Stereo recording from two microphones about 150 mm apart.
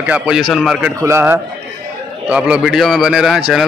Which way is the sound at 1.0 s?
15° right (ahead or behind).